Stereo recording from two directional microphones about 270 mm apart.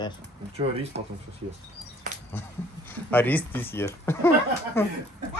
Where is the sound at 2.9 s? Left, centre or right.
Centre.